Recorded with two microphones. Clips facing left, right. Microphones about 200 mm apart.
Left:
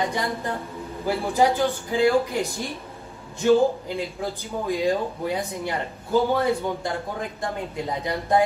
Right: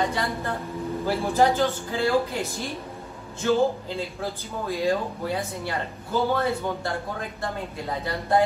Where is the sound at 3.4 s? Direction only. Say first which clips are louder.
Left 4 dB; 15° left (ahead or behind).